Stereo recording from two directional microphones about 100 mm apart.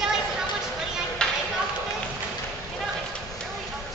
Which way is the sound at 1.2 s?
10° left (ahead or behind).